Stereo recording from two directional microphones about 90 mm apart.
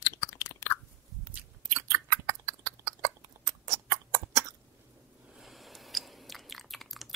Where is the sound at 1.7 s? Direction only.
35° right (ahead or behind).